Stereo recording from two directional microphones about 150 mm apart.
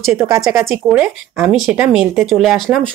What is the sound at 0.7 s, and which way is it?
Speech, 5° right (ahead or behind).